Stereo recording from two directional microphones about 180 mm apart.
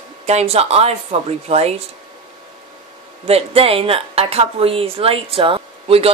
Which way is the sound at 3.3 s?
35° right (ahead or behind).